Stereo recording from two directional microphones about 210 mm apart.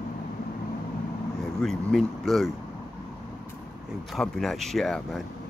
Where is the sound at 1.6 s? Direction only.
Centre (ahead or behind).